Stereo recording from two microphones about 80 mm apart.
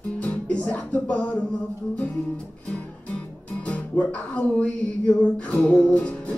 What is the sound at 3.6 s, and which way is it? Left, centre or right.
Music, centre.